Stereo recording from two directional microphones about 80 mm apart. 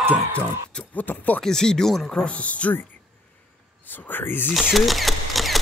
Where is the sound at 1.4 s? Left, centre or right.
Centre.